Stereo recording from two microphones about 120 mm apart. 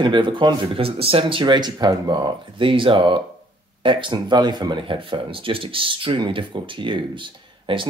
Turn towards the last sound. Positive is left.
turn(degrees=-45)  # may be behind; listen again after turning